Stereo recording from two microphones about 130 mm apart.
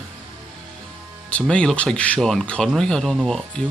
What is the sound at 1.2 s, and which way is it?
Speech, 10° left (ahead or behind).